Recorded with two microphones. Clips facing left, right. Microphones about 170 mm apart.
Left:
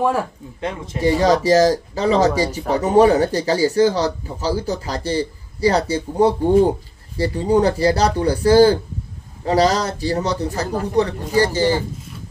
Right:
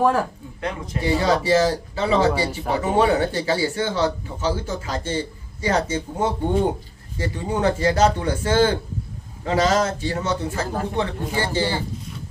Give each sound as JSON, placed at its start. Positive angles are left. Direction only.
{"t": 0.6, "sound": "speech", "side_deg": 25}
{"t": 1.0, "sound": "speech", "side_deg": 40}